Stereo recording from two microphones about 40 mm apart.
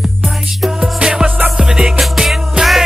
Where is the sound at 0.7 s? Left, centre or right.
Centre.